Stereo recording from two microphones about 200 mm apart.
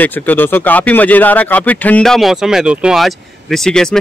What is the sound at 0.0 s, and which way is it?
Speech, 10° left (ahead or behind).